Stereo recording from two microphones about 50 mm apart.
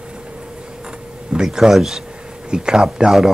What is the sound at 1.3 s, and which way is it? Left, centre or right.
Speech, centre.